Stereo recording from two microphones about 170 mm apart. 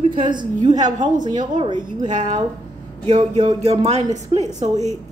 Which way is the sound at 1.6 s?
25° right (ahead or behind).